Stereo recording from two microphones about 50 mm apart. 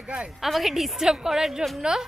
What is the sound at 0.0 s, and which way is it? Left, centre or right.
Speech, right.